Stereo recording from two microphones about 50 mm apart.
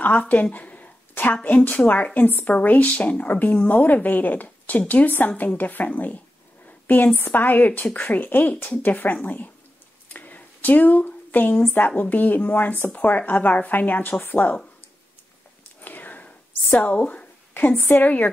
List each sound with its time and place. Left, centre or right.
0.0 s a woman's voice: left
7.2 s a woman's voice: left
10.0 s a sound: left
12.0 s a woman's voice: left
15.8 s a sound: left
16.9 s speech: left
17.6 s a woman's voice: left